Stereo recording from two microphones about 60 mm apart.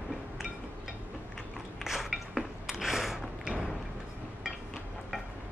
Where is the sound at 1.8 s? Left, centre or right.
Centre.